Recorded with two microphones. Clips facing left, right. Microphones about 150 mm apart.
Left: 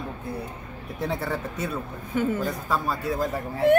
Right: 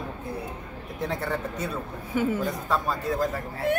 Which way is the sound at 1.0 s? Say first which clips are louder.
Left 1 dB; 5° left (ahead or behind).